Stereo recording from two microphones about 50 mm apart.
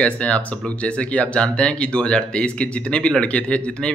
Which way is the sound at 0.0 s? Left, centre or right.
Left.